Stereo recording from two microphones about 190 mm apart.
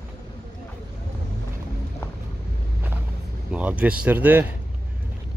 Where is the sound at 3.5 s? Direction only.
5° right (ahead or behind).